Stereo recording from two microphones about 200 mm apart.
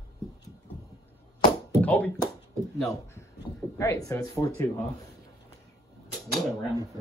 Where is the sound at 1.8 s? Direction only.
5° left (ahead or behind).